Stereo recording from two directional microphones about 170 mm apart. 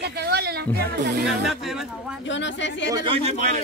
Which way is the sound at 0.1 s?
70° right (ahead or behind).